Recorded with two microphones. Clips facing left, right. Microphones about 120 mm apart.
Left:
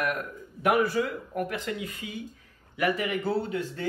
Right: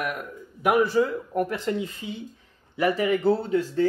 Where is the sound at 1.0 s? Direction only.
35° right (ahead or behind).